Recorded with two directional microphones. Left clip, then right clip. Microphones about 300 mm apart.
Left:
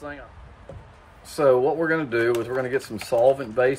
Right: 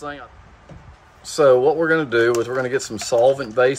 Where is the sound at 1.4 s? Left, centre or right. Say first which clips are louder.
Right 5 dB; centre.